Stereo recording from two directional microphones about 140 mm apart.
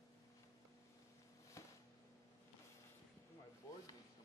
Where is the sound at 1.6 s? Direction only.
20° left (ahead or behind).